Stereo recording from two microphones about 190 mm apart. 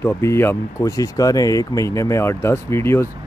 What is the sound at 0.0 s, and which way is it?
Speech, 15° left (ahead or behind).